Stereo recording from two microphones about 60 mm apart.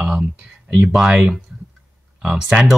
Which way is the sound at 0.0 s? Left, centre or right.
Centre.